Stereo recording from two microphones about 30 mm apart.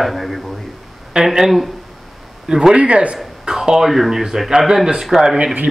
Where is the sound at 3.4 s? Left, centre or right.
Centre.